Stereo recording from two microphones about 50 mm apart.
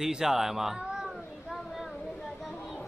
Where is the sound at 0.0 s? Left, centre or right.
Centre.